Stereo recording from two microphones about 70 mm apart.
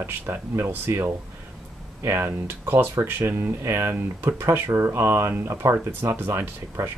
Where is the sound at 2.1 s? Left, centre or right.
Right.